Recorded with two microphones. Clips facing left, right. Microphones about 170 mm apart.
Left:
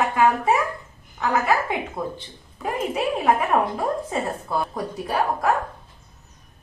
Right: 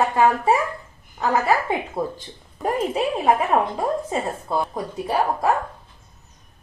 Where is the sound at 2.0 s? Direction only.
30° right (ahead or behind).